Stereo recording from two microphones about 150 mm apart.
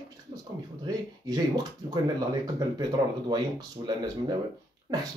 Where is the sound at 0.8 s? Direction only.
25° right (ahead or behind).